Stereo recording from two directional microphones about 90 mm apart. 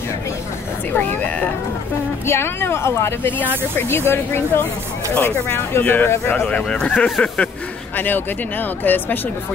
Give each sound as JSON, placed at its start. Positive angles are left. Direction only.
{"t": 0.9, "sound": "a sound", "side_deg": 15}
{"t": 2.2, "sound": "speech", "side_deg": 30}
{"t": 6.4, "sound": "speech", "side_deg": 10}
{"t": 7.9, "sound": "speech", "side_deg": 20}